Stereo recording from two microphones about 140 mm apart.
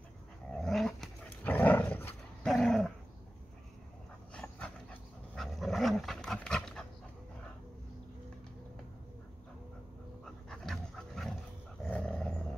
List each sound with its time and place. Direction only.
0.5 s dog: 5° left (ahead or behind)
2.4 s dog: 5° left (ahead or behind)
4.3 s dog: 5° left (ahead or behind)
10.2 s dog: 5° left (ahead or behind)